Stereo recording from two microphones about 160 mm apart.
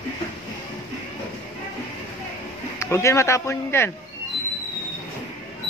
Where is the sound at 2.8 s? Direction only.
15° left (ahead or behind).